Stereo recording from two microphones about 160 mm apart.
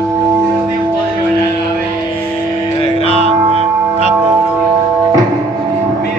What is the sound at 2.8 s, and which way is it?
Music, 40° left (ahead or behind).